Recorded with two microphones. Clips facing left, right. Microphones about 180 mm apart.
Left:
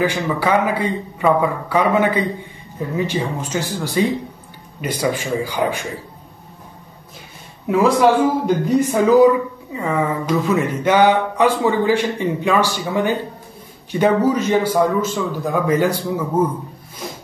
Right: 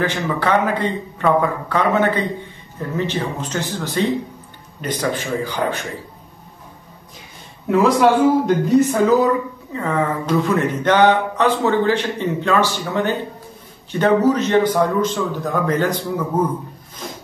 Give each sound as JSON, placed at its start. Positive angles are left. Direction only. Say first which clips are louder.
{"t": 0.0, "sound": "a man's voice", "louder": "left 1 dB", "side_deg": 10}
{"t": 7.6, "sound": "a man's voice", "louder": "even", "side_deg": 10}
{"t": 17.0, "sound": "wood", "louder": "left 1 dB", "side_deg": 10}